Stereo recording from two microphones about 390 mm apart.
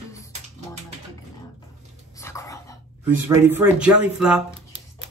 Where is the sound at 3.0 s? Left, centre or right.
Centre.